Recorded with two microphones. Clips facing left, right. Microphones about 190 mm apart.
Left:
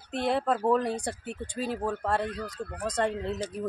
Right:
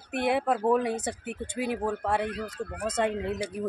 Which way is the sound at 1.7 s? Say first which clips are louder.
Even; 10° right (ahead or behind).